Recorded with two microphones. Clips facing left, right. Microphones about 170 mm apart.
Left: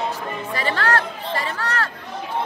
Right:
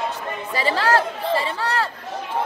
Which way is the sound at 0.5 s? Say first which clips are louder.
Right 3 dB; 30° right (ahead or behind).